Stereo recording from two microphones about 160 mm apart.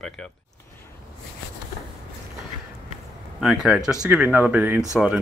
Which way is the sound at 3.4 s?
Centre (ahead or behind).